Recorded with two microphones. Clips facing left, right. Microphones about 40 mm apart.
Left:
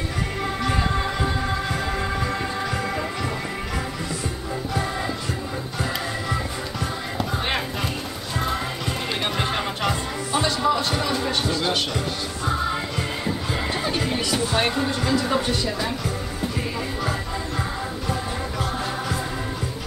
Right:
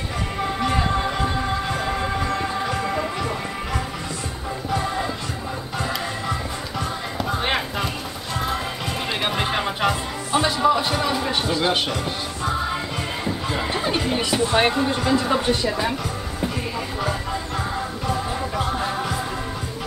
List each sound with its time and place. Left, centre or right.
0.4 s music: centre
9.2 s music: centre
13.2 s a sound: centre
13.9 s speech: centre
18.0 s music: centre